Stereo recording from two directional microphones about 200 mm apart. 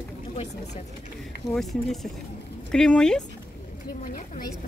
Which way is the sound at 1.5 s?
Centre (ahead or behind).